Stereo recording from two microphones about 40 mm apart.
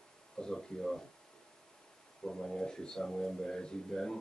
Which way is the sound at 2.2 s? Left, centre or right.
Centre.